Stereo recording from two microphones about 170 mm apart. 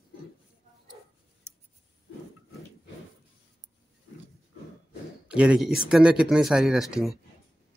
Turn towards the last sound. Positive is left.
turn(degrees=0)  # may be behind; listen again after turning